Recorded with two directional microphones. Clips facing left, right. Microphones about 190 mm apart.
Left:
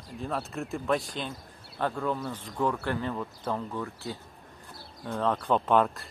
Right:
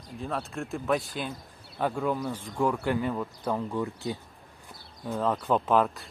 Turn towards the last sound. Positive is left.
turn(degrees=0)  # may be behind; listen again after turning